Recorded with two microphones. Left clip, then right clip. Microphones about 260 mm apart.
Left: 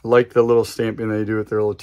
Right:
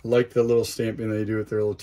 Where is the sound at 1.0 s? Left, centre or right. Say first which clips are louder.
Left 5 dB; centre.